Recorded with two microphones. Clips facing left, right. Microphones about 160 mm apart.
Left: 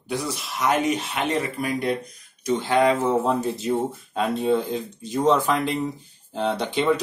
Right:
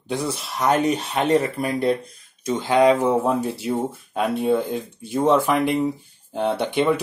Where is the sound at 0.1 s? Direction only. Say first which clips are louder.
Right 2 dB; 30° right (ahead or behind).